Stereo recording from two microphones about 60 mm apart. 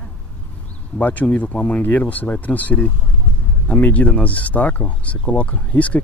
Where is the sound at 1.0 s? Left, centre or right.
Left.